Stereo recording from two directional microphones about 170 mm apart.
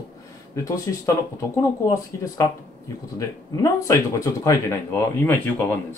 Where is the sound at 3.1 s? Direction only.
20° left (ahead or behind).